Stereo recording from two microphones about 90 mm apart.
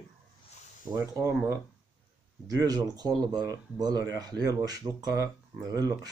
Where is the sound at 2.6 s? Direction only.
45° right (ahead or behind).